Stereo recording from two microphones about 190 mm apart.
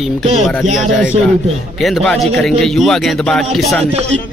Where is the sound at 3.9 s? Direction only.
35° right (ahead or behind).